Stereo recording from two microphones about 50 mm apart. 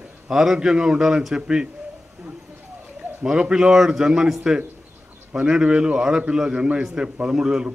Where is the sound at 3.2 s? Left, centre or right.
Centre.